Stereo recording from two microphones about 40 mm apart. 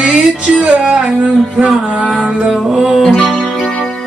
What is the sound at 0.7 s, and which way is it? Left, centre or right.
Speech, right.